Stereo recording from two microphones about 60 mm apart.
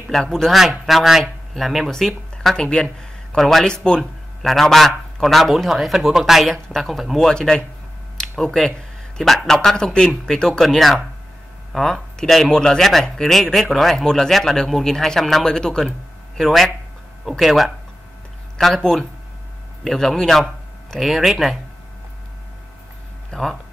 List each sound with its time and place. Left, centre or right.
0.1 s speech: centre
7.3 s speech: centre
23.3 s speech: centre